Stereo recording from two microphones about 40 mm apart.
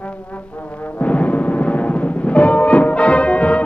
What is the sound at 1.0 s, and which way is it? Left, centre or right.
Timpani, left.